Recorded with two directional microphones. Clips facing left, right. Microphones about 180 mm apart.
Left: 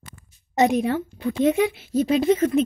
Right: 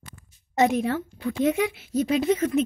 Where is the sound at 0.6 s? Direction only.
15° left (ahead or behind).